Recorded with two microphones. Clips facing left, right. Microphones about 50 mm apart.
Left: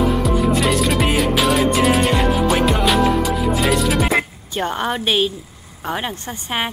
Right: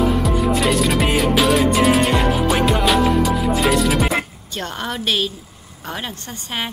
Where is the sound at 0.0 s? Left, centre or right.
Centre.